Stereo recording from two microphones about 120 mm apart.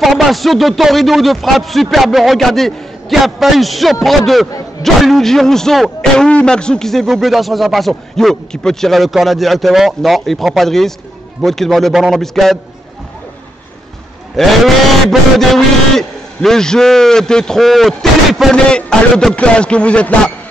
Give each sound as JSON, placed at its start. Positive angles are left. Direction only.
{"t": 0.0, "sound": "speech", "side_deg": 0}
{"t": 14.3, "sound": "speech", "side_deg": 0}